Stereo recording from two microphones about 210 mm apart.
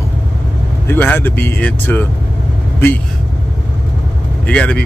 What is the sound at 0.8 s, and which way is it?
Speech, 10° left (ahead or behind).